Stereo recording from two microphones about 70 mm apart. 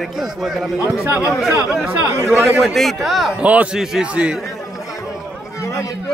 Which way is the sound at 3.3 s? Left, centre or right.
Centre.